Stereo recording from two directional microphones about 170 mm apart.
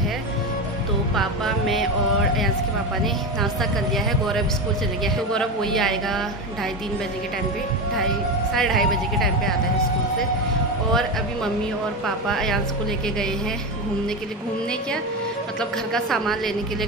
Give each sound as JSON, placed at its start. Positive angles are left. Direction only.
{"t": 1.1, "sound": "a woman's voice", "side_deg": 0}
{"t": 3.9, "sound": "a woman's voice", "side_deg": 0}
{"t": 8.5, "sound": "a woman's voice", "side_deg": 0}
{"t": 12.3, "sound": "a woman's voice", "side_deg": 0}
{"t": 15.9, "sound": "a woman's voice", "side_deg": 0}